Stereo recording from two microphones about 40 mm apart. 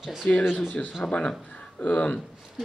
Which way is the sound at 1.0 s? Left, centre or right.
Left.